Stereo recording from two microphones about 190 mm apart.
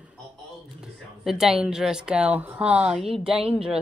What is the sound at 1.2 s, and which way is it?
Speech, centre (ahead or behind).